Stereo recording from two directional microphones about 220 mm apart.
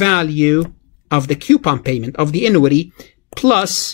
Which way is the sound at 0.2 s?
5° left (ahead or behind).